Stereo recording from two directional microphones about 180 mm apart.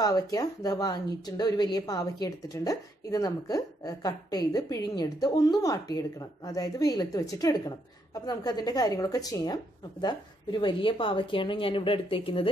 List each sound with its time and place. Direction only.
0.0 s speech: 20° left (ahead or behind)